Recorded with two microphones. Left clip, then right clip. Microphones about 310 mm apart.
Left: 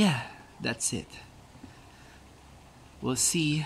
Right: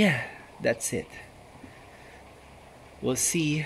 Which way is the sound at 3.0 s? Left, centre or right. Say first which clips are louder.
Right 1 dB; centre.